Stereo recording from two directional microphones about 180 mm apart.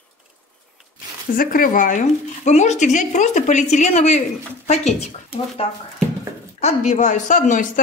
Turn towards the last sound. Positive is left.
turn(degrees=45)  # may be behind; listen again after turning